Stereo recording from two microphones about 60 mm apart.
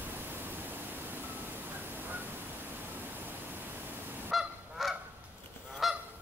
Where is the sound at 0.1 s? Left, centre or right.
Right.